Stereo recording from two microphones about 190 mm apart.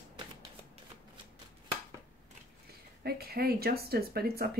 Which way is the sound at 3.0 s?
55° right (ahead or behind).